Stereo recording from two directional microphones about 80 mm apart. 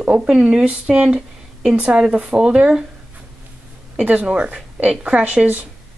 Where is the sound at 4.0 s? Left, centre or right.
Centre.